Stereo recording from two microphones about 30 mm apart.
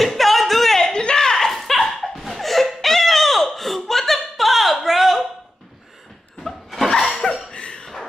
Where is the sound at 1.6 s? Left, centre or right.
Centre.